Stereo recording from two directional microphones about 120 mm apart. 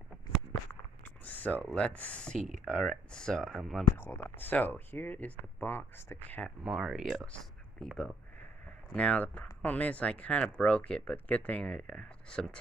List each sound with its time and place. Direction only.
1.2 s speech: 15° left (ahead or behind)
4.0 s speech: 15° left (ahead or behind)
6.6 s speech: 5° right (ahead or behind)